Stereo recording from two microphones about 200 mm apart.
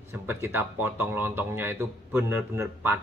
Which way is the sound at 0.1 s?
10° right (ahead or behind).